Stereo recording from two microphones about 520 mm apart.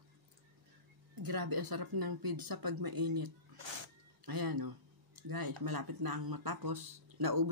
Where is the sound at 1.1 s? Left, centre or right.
Right.